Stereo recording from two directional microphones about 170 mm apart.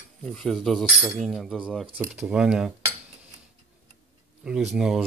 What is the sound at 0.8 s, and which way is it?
Speech, 15° right (ahead or behind).